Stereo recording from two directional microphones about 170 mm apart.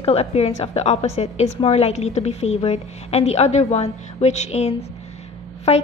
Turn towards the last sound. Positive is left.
turn(degrees=40)  # may be behind; listen again after turning